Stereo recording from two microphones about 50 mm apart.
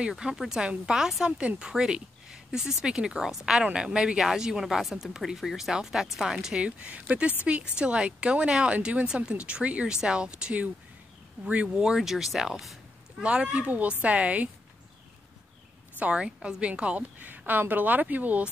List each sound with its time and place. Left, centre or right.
0.1 s speech: centre
6.6 s speech: right; by 12.7 s centre
13.2 s speech: right
16.0 s speech: right
17.5 s speech: right